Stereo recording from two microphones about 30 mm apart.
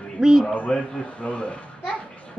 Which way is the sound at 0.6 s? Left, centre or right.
Left.